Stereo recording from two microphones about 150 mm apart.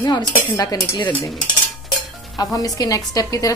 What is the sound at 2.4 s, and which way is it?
Dishes, 25° left (ahead or behind).